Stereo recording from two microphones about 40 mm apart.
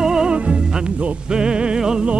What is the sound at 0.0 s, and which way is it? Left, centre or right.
Music, centre.